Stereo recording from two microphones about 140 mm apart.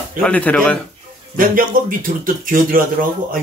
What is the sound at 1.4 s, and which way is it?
Speech, 90° right.